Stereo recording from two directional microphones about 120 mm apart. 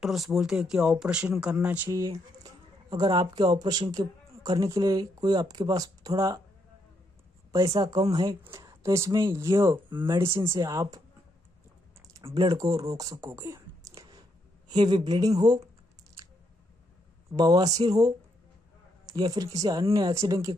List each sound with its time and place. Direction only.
0.0 s speech: centre (ahead or behind)
1.9 s speech: 30° right (ahead or behind)
7.5 s speech: 30° right (ahead or behind)
8.5 s a sound: 30° right (ahead or behind)
9.3 s speech: 25° right (ahead or behind)
9.8 s speech: 40° right (ahead or behind)
10.6 s speech: 30° right (ahead or behind)
12.4 s speech: 30° right (ahead or behind)
14.7 s speech: 40° right (ahead or behind)
17.4 s speech: 35° right (ahead or behind)